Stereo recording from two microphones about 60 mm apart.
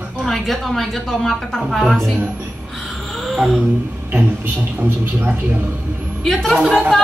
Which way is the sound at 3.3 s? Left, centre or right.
Centre.